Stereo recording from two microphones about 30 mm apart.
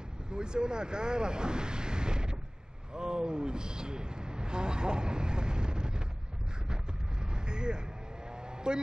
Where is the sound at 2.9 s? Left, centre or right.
Right.